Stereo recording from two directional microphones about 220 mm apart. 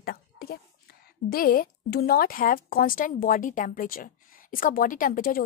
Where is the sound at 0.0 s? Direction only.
45° left (ahead or behind).